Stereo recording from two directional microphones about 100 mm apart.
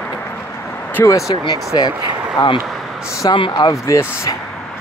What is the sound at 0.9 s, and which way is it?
Speech, 25° left (ahead or behind).